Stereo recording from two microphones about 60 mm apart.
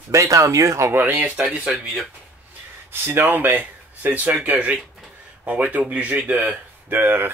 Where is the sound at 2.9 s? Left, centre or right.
Right; by 6.4 s centre.